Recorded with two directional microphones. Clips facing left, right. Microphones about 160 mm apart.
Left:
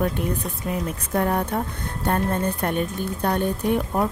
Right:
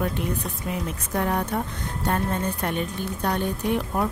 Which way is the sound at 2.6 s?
50° left (ahead or behind).